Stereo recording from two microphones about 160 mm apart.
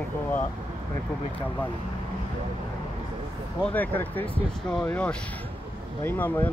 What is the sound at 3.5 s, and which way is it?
Speech, 10° left (ahead or behind).